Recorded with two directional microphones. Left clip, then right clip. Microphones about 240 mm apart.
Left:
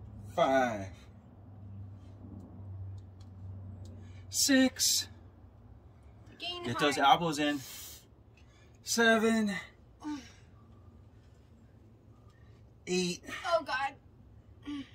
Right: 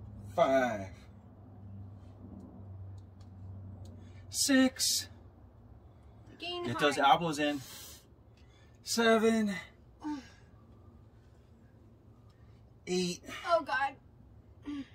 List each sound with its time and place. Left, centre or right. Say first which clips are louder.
0.3 s speech: even; centre
4.0 s speech: left 2 dB; centre
6.3 s a sound: even; centre
6.6 s speech: even; centre
8.9 s speech: even; centre
9.9 s gasp: right 1 dB; centre
12.8 s speech: left 1 dB; centre
13.5 s a woman's voice: right 1 dB; centre
14.6 s a sound: even; centre